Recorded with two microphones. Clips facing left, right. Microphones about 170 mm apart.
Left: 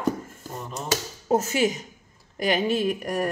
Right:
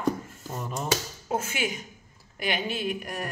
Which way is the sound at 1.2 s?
40° left (ahead or behind).